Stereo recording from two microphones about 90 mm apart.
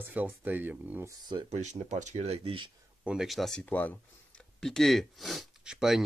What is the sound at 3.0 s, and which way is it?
Speech, 5° right (ahead or behind).